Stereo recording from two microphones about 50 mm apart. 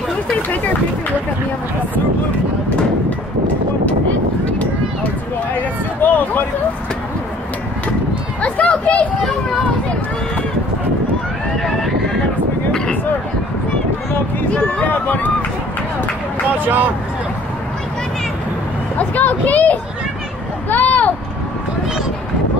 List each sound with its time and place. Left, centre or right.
5.6 s a sound: left
8.4 s a sound: left
14.6 s speech: left
16.5 s speech: right
18.9 s speech: left
20.7 s vehicle: left